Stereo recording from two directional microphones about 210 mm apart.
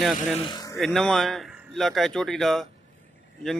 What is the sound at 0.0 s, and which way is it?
A man's voice, centre (ahead or behind).